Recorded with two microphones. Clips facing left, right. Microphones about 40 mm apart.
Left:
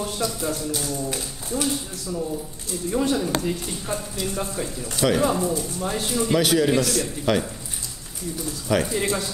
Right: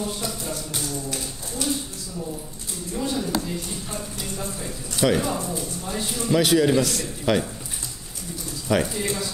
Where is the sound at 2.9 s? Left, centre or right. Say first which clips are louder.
Left 5 dB; left.